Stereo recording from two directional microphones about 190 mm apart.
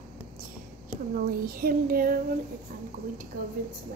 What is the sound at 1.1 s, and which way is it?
Speech, 50° right (ahead or behind).